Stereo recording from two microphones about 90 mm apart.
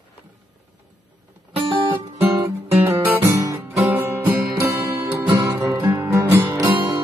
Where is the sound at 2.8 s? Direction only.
20° right (ahead or behind).